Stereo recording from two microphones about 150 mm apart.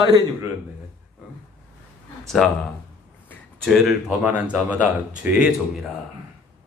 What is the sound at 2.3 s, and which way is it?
Speech, centre (ahead or behind).